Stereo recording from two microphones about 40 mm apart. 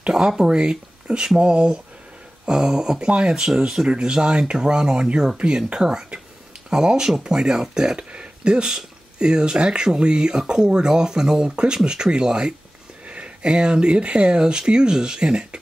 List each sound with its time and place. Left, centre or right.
0.2 s speech: centre
3.4 s speech: centre